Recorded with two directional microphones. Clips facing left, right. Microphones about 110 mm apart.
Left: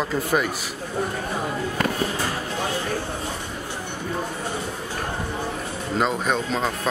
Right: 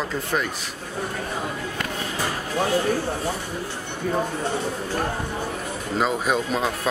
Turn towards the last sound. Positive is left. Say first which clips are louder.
# right 1 dB
turn(degrees=-5)  # may be behind; listen again after turning